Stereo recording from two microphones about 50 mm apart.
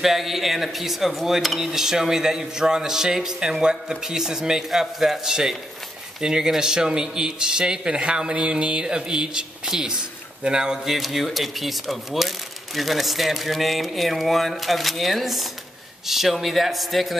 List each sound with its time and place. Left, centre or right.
0.0 s a man's voice: centre
10.9 s speech: centre